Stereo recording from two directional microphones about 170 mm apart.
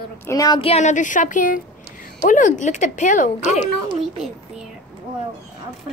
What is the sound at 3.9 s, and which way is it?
Speech, 30° right (ahead or behind).